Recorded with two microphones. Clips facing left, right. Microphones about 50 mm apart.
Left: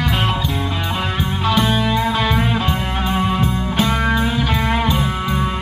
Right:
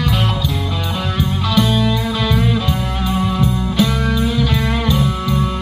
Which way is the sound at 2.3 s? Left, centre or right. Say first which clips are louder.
Right 1 dB; left.